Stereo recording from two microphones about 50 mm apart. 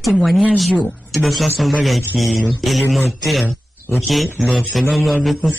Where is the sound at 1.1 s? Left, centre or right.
Centre.